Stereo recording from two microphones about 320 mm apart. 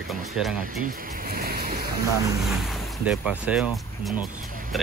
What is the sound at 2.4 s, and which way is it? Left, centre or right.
Speech, centre.